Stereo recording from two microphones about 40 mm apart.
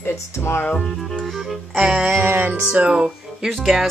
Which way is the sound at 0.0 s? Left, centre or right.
Left.